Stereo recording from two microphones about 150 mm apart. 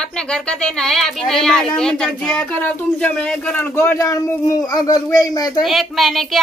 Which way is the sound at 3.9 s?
25° left (ahead or behind).